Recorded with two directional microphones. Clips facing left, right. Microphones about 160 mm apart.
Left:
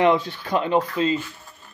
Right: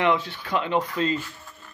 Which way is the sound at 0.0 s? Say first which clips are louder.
Left 4 dB; 35° left (ahead or behind).